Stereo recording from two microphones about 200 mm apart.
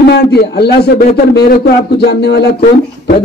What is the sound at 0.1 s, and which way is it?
A man's voice, 55° left (ahead or behind).